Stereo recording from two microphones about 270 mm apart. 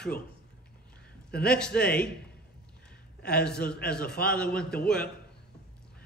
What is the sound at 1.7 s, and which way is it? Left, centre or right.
Speech, left.